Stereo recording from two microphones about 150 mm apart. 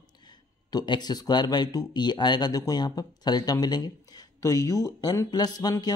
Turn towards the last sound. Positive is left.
turn(degrees=25)  # may be behind; listen again after turning